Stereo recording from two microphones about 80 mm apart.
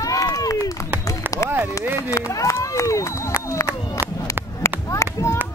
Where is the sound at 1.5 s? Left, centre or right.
Right.